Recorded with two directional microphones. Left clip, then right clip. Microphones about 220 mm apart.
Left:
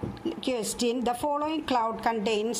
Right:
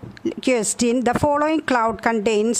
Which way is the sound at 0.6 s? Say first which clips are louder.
Right 8 dB; 25° right (ahead or behind).